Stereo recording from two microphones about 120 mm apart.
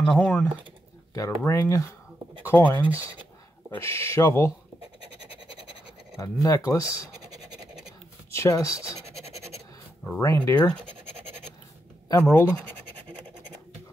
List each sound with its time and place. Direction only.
0.0 s speech: 10° left (ahead or behind)
1.1 s speech: 25° left (ahead or behind)
2.8 s speech: 15° right (ahead or behind)
3.7 s speech: 20° left (ahead or behind)
6.2 s speech: 30° left (ahead or behind)
7.2 s scratch: 30° right (ahead or behind)
8.3 s speech: 25° left (ahead or behind)
9.3 s scratch: 25° right (ahead or behind)
10.2 s speech: 30° left (ahead or behind)
11.1 s scratch: 50° right (ahead or behind)
12.2 s speech: 20° left (ahead or behind)